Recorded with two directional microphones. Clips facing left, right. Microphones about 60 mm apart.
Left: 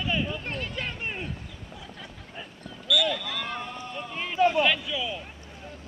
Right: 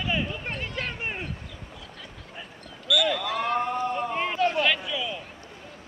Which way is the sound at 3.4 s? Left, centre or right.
Right.